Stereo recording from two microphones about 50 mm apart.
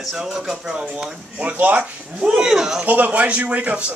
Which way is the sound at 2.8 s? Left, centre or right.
Right.